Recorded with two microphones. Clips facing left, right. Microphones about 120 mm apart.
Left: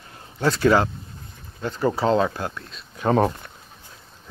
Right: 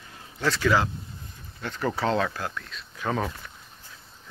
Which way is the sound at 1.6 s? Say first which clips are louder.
Left 5 dB; 30° left (ahead or behind).